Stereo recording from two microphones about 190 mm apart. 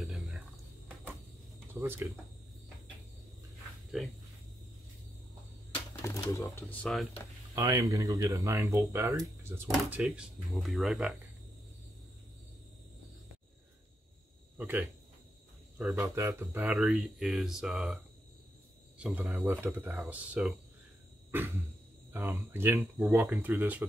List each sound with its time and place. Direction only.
0.0 s a sound: centre (ahead or behind)
1.7 s speech: 10° right (ahead or behind)
3.9 s speech: centre (ahead or behind)
6.0 s speech: 15° left (ahead or behind)
7.5 s speech: 20° right (ahead or behind); by 11.1 s centre (ahead or behind)
14.6 s speech: 10° right (ahead or behind)
15.9 s speech: 15° right (ahead or behind)
22.1 s speech: 10° right (ahead or behind)